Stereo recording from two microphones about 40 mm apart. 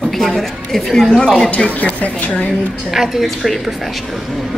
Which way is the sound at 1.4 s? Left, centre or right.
Left.